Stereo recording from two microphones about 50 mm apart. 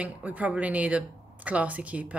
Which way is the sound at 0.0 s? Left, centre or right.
Right.